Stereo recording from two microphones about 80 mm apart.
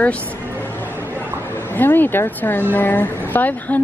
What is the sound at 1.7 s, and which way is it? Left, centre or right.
Speech, left.